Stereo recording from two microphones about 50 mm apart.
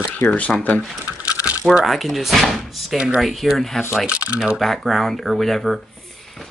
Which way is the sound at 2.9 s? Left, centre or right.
Centre.